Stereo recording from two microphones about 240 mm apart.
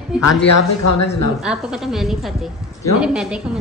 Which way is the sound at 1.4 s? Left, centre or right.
Centre.